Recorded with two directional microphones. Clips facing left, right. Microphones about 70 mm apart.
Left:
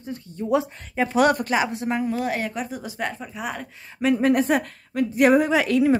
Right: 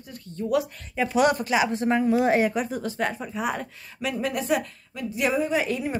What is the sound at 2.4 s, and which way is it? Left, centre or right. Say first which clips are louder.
Speech: right 4 dB; centre.